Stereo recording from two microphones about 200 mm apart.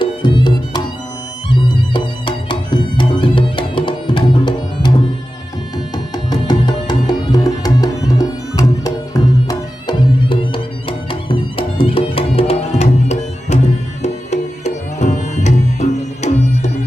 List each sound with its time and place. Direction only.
0.0 s music: 25° left (ahead or behind)
6.1 s music: 20° left (ahead or behind)